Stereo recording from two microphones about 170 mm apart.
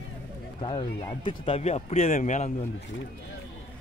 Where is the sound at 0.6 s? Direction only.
25° left (ahead or behind); by 2.5 s 45° left (ahead or behind).